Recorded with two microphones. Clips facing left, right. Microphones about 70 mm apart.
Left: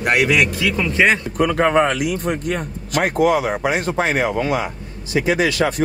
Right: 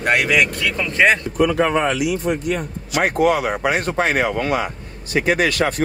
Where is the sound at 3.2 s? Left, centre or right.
Right.